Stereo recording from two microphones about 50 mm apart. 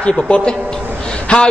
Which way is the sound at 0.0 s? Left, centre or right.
Left.